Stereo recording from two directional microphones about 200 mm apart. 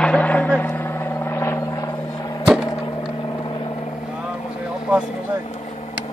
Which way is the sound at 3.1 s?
25° left (ahead or behind).